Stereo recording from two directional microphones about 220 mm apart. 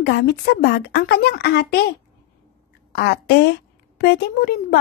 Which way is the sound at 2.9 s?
50° left (ahead or behind).